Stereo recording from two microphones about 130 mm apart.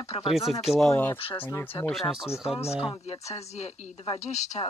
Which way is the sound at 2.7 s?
5° right (ahead or behind).